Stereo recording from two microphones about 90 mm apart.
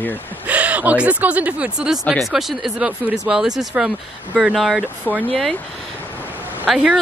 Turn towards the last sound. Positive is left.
turn(degrees=0)  # may be behind; listen again after turning